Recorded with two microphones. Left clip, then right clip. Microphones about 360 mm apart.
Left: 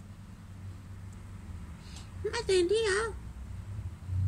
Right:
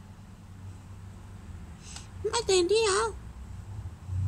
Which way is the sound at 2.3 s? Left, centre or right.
Centre.